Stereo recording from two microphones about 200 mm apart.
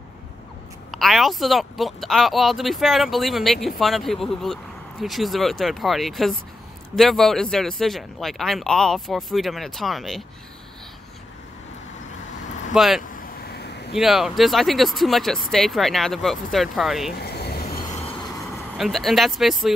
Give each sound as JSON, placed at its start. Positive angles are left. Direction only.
{"t": 0.9, "sound": "speech", "side_deg": 0}
{"t": 12.7, "sound": "speech", "side_deg": 0}
{"t": 13.5, "sound": "vehicle", "side_deg": 55}
{"t": 13.9, "sound": "speech", "side_deg": 0}
{"t": 17.2, "sound": "vehicle", "side_deg": 55}
{"t": 18.8, "sound": "speech", "side_deg": 0}